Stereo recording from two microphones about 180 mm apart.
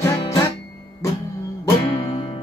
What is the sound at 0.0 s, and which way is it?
Guitar, 15° left (ahead or behind).